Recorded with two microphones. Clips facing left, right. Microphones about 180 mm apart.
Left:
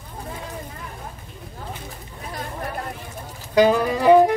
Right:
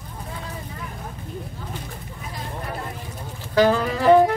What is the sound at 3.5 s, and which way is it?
Music, 15° left (ahead or behind).